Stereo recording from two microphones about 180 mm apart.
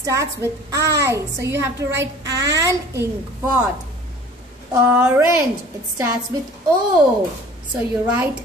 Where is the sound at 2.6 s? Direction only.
15° right (ahead or behind).